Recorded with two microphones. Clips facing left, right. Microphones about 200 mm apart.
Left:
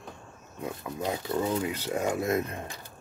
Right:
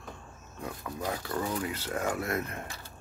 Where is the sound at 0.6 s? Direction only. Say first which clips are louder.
Left 3 dB; 25° left (ahead or behind).